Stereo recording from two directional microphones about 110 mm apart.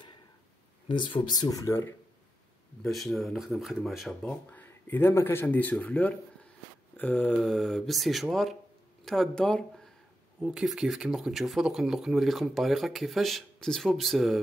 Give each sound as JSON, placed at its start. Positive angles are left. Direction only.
{"t": 0.8, "sound": "speech", "side_deg": 50}
{"t": 2.8, "sound": "speech", "side_deg": 0}
{"t": 4.2, "sound": "speech", "side_deg": 15}
{"t": 7.4, "sound": "speech", "side_deg": 5}
{"t": 10.4, "sound": "speech", "side_deg": -5}